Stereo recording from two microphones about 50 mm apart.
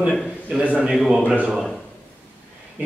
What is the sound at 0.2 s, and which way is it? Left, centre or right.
Speech, centre.